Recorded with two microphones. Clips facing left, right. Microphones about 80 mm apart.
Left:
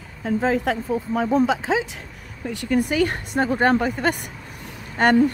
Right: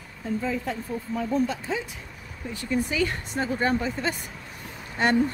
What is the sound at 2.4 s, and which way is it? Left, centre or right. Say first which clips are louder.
A woman's voice: left 6 dB; left.